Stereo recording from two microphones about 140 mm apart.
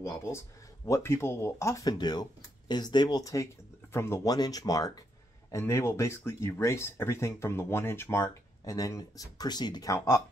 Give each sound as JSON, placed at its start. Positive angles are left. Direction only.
{"t": 0.0, "sound": "speech", "side_deg": 20}